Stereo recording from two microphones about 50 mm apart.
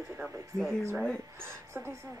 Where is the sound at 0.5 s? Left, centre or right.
Centre.